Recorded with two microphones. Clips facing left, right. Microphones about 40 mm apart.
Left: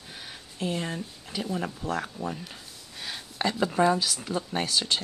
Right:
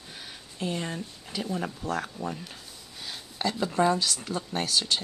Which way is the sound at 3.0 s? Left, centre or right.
Left.